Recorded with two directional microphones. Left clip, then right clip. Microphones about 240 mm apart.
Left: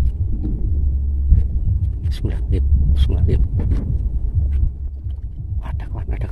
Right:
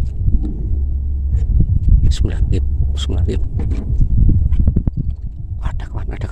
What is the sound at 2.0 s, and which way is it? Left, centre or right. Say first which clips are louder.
Speech: right 2 dB; centre.